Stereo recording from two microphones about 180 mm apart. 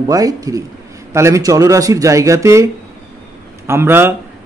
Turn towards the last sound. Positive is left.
turn(degrees=-10)  # may be behind; listen again after turning